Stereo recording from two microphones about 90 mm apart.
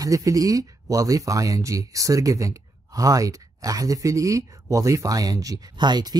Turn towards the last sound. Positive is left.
turn(degrees=-50)  # may be behind; listen again after turning